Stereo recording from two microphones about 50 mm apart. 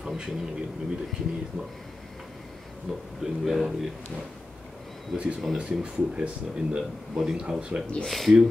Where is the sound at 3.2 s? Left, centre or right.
Centre.